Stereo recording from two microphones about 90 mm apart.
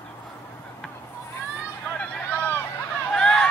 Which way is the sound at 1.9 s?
20° left (ahead or behind).